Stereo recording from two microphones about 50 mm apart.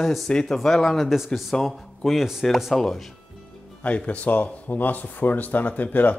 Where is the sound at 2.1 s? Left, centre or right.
Centre.